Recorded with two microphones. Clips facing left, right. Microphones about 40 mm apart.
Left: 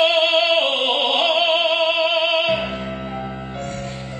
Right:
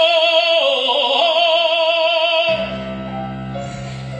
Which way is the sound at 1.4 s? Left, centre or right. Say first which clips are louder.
Right 3 dB; right.